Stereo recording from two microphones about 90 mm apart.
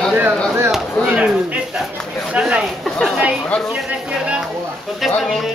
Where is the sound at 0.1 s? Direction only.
20° right (ahead or behind).